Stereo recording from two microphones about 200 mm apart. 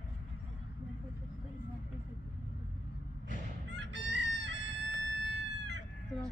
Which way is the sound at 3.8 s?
60° right (ahead or behind).